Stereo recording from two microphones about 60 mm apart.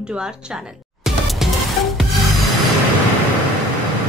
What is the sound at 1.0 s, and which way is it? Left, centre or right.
Music, centre.